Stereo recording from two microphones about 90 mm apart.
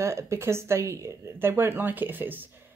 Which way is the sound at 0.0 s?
30° right (ahead or behind).